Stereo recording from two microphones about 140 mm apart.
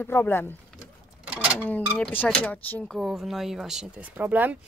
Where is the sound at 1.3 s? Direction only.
10° right (ahead or behind).